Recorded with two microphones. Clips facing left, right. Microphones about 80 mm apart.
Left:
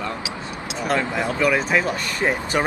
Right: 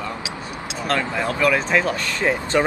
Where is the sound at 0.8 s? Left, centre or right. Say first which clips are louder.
Even; centre.